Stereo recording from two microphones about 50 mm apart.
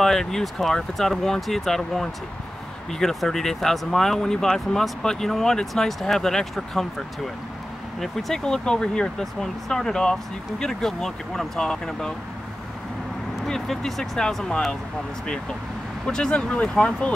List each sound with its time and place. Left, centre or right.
0.0 s speech: centre
13.5 s speech: centre
16.1 s speech: centre